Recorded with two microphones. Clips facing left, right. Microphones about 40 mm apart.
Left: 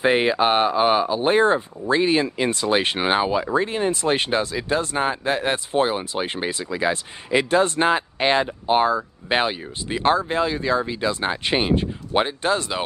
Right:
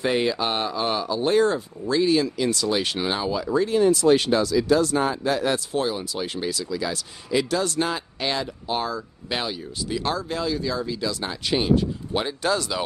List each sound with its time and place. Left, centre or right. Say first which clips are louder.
0.0 s speech: left 5 dB; left